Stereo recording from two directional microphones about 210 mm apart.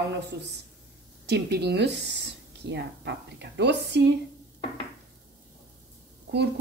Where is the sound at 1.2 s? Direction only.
50° right (ahead or behind).